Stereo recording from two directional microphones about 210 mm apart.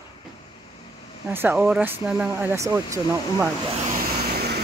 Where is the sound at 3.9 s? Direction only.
45° right (ahead or behind).